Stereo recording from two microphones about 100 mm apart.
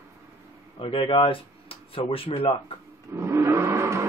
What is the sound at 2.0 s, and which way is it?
Speech, 80° left.